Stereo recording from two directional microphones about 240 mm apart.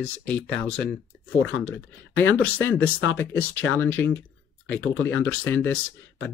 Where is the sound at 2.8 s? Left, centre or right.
Left.